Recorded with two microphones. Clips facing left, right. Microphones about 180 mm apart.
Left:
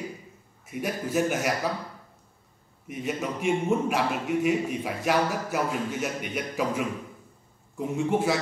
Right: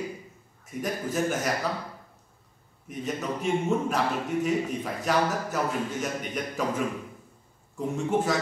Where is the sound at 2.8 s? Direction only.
10° left (ahead or behind).